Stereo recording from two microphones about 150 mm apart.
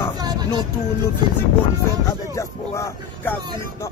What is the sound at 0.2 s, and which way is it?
Vehicle, 30° right (ahead or behind).